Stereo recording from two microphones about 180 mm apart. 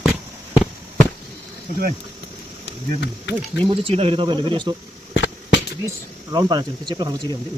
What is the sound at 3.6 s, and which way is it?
Speech, 30° right (ahead or behind).